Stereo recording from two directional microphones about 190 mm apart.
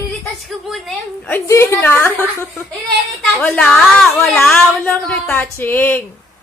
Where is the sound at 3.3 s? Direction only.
5° left (ahead or behind).